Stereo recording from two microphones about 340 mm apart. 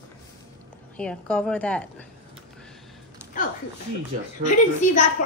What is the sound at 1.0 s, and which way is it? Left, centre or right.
Speech, centre.